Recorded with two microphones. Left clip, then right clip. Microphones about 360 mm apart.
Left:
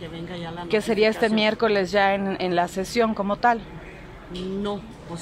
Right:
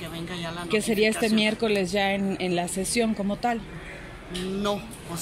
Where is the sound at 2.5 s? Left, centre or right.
Left.